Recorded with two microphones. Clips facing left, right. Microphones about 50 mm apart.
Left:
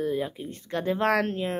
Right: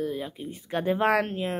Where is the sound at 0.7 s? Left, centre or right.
Centre.